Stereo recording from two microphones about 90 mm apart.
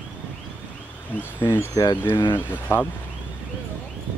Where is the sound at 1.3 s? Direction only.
25° left (ahead or behind).